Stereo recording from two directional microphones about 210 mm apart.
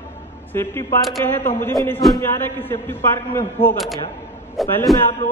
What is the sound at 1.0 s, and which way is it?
A man's voice, centre (ahead or behind).